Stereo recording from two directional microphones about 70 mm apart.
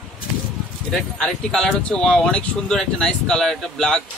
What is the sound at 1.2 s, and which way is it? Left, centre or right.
Speech, centre.